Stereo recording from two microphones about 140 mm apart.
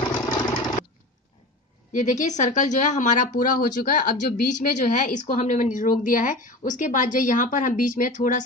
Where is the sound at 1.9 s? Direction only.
60° left (ahead or behind).